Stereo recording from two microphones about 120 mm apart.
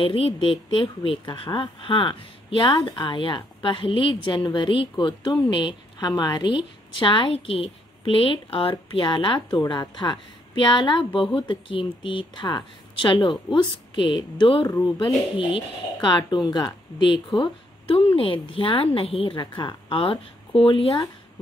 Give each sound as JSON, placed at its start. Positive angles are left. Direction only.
{"t": 0.0, "sound": "a woman's voice", "side_deg": 50}
{"t": 14.7, "sound": "speech", "side_deg": 25}
{"t": 15.3, "sound": "a woman's voice", "side_deg": 40}
{"t": 17.1, "sound": "a woman's voice", "side_deg": 40}